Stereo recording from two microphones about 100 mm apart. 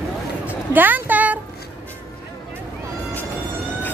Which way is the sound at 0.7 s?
20° right (ahead or behind).